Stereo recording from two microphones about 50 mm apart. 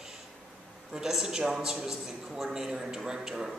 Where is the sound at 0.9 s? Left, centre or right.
Centre.